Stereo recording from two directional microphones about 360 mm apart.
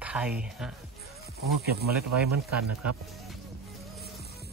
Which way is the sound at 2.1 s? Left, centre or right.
Right.